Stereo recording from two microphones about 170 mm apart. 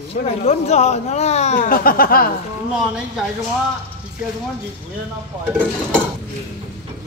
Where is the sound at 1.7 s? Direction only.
60° left (ahead or behind).